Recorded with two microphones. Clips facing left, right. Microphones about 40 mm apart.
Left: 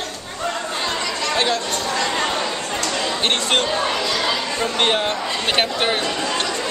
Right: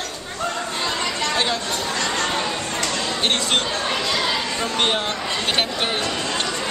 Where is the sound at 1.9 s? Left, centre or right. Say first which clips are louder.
Left 2 dB; centre.